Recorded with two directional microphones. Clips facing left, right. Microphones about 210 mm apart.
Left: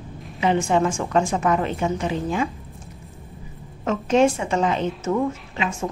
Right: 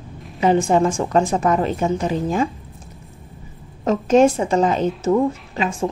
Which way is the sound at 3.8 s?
40° right (ahead or behind).